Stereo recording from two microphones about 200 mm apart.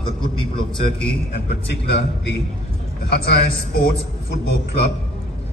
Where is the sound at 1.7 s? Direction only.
60° left (ahead or behind).